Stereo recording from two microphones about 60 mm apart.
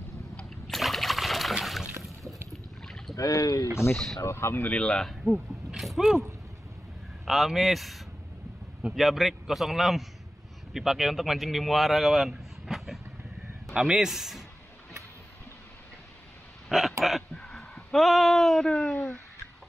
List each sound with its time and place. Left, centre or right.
0.4 s splash: centre
2.5 s a sound: centre
3.2 s speech: left
3.9 s speech: centre
4.2 s speech: left
4.6 s speech: centre
5.2 s speech: centre
7.2 s a man's voice: centre
16.6 s a sound: centre
17.3 s a sound: centre
18.7 s speech: centre
18.9 s a sound: left